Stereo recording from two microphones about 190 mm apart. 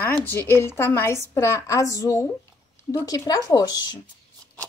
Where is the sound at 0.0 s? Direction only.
10° left (ahead or behind).